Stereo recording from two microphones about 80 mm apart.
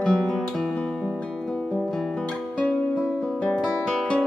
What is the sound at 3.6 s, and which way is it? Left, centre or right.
Music, centre.